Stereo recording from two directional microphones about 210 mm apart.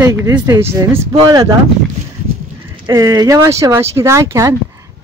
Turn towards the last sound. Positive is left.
turn(degrees=-15)  # may be behind; listen again after turning